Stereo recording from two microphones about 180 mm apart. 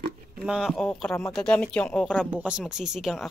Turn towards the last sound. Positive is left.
turn(degrees=0)  # may be behind; listen again after turning